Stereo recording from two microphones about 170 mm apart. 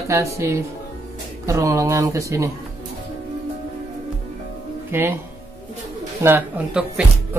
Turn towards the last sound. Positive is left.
turn(degrees=-5)  # may be behind; listen again after turning